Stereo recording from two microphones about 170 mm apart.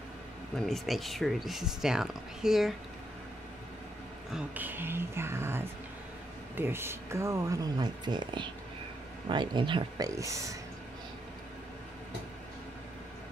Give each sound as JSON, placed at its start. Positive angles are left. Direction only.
{"t": 0.6, "sound": "speech", "side_deg": 0}
{"t": 4.3, "sound": "speech", "side_deg": -10}